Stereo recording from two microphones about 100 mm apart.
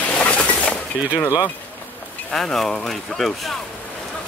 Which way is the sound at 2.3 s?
5° left (ahead or behind).